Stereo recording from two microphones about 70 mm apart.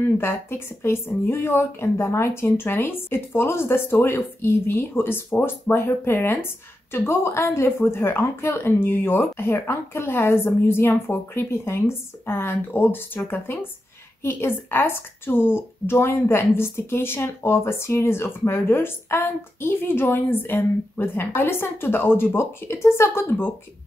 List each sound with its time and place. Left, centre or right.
0.0 s speech: left